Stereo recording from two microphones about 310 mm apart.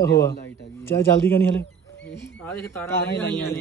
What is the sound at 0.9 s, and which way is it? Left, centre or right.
Speech, centre.